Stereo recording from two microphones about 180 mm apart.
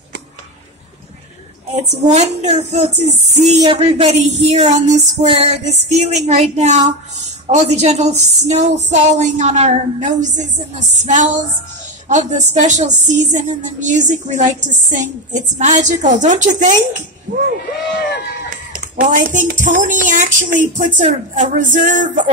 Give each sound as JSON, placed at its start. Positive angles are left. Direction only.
{"t": 1.8, "sound": "music", "side_deg": -40}
{"t": 11.1, "sound": "speech", "side_deg": -40}
{"t": 18.7, "sound": "speech", "side_deg": -45}